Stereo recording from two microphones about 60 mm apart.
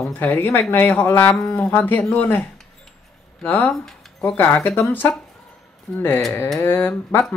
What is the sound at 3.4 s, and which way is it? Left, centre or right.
Speech, left.